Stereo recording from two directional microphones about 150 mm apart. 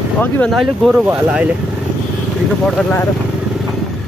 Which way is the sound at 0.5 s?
Centre (ahead or behind).